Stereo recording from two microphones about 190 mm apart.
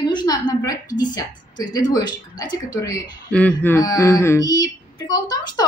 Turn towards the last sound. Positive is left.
turn(degrees=20)  # may be behind; listen again after turning